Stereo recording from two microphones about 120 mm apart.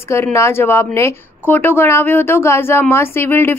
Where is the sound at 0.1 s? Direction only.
25° left (ahead or behind).